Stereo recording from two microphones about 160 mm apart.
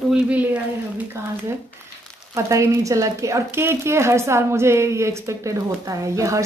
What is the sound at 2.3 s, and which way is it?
A woman's voice, 20° right (ahead or behind).